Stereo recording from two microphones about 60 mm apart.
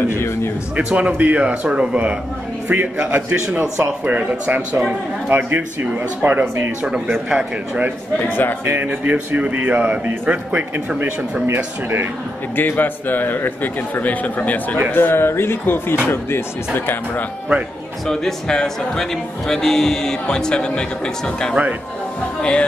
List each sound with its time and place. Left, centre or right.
0.1 s a sound: left
0.7 s a man's voice: centre
5.3 s speech: right
7.2 s a man's voice: right
8.2 s a man's voice: left
8.7 s a man's voice: right
11.4 s speech: right
12.5 s a man's voice: left
14.9 s a man's voice: left
18.0 s speech: centre